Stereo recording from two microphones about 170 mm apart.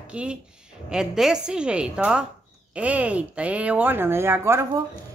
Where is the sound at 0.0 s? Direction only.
5° right (ahead or behind).